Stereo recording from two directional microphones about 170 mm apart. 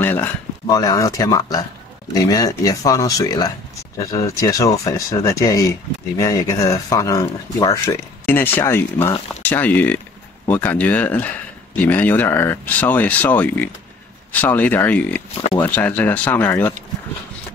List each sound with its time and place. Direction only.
0.0 s speech: 15° left (ahead or behind)